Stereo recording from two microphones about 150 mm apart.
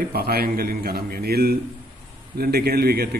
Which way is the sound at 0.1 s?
90° right.